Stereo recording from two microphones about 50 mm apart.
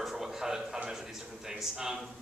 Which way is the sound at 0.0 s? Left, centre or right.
Centre.